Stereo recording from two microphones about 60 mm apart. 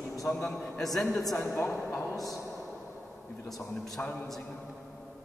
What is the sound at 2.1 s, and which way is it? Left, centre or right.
Speech, left.